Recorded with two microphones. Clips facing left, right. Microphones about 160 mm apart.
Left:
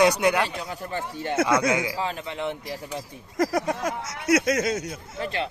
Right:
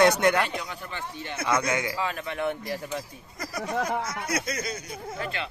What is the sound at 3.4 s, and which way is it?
Speech, 90° left.